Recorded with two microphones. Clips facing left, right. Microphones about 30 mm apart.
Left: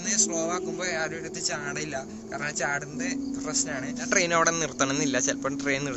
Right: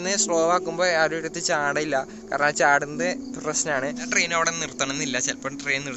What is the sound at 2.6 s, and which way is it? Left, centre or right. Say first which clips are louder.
Speech: right 8 dB; right.